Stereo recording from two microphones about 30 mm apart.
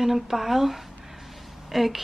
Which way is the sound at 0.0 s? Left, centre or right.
Centre.